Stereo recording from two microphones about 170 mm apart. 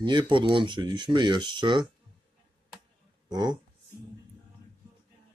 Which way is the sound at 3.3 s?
25° right (ahead or behind).